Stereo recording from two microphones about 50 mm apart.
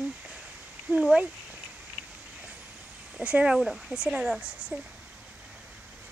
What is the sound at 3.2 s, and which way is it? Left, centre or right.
Speech, right.